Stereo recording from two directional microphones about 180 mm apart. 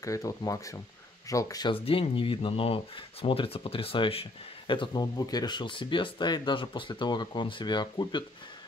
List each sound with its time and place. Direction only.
0.0 s speech: 20° left (ahead or behind)